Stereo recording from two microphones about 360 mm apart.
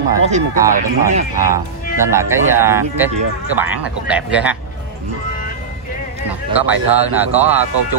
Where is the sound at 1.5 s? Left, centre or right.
Centre.